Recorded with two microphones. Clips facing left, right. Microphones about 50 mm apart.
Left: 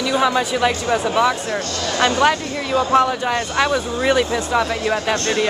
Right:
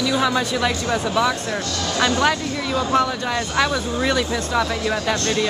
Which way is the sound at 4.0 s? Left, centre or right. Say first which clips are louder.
Left 4 dB; left.